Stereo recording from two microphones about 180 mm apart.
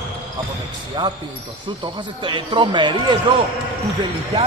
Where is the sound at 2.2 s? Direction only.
25° right (ahead or behind).